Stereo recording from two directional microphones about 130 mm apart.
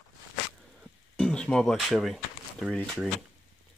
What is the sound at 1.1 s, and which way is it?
Speech, 5° left (ahead or behind).